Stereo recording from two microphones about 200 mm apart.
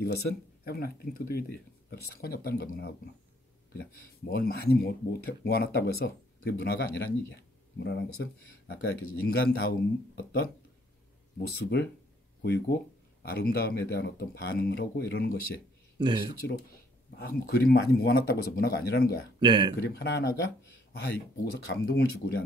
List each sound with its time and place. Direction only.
0.0 s speech: 55° left (ahead or behind)
4.3 s speech: 50° left (ahead or behind)
16.0 s speech: 25° right (ahead or behind)
17.2 s speech: 50° left (ahead or behind)
19.4 s speech: 25° right (ahead or behind)
19.8 s speech: 55° left (ahead or behind)
21.6 s speech: 55° left (ahead or behind)